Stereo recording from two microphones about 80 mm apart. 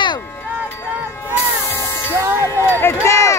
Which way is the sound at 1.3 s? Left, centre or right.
Left.